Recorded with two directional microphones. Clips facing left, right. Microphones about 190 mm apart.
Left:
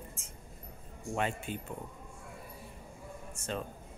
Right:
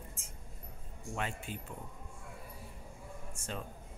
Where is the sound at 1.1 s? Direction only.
Centre (ahead or behind).